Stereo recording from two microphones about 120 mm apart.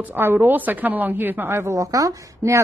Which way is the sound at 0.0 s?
15° right (ahead or behind).